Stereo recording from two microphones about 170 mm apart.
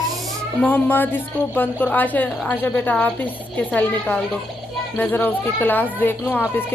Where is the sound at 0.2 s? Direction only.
10° left (ahead or behind).